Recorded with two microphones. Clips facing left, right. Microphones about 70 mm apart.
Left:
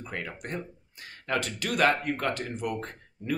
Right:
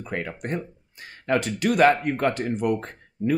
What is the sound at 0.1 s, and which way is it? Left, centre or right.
Speech, right.